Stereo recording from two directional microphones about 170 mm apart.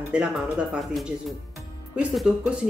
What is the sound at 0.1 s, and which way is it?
Speech, 5° right (ahead or behind).